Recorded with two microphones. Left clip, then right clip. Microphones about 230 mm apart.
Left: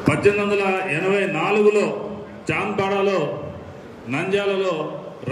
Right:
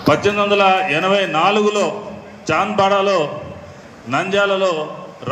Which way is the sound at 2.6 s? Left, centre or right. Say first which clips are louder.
Right 6 dB; centre.